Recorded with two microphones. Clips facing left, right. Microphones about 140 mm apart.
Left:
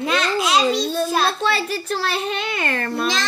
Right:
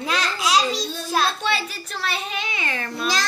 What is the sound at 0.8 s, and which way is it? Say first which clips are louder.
Speech: left 8 dB; 60° left (ahead or behind).